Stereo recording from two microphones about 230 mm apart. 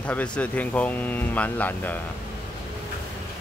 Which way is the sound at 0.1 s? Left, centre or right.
Centre.